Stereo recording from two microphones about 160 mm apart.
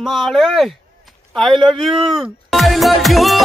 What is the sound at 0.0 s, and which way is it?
Speech, centre (ahead or behind).